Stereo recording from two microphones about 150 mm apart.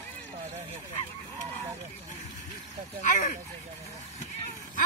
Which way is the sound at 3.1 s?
55° left (ahead or behind).